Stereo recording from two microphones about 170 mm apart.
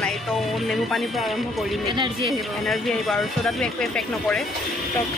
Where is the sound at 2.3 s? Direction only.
Centre (ahead or behind).